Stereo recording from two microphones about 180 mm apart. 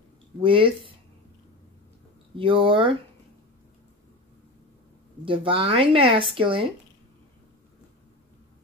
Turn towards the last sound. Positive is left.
turn(degrees=-30)  # may be behind; listen again after turning